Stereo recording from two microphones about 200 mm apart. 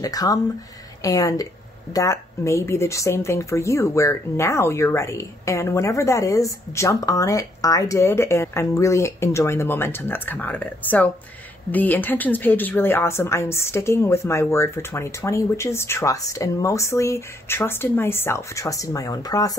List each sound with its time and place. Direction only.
0.0 s speech: 20° left (ahead or behind)